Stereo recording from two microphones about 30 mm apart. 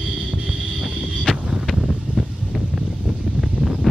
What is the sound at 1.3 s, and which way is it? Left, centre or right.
Wind noise, left.